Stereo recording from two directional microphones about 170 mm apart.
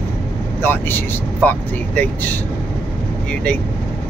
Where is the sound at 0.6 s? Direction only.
10° left (ahead or behind).